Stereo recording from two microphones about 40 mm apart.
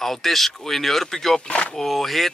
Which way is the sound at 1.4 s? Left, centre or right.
Left.